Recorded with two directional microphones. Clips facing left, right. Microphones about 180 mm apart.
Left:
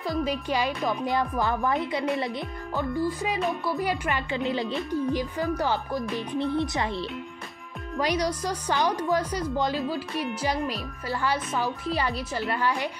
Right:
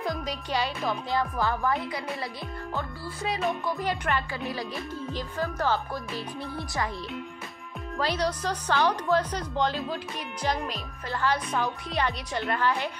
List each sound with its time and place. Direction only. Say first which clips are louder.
0.0 s a woman's voice: left 4 dB; 5° left (ahead or behind); by 2.2 s 20° left (ahead or behind)
3.3 s music: left 1 dB; centre (ahead or behind)
3.8 s a woman's voice: left 1 dB; 10° left (ahead or behind)
8.0 s a woman's voice: left 2 dB; 15° left (ahead or behind)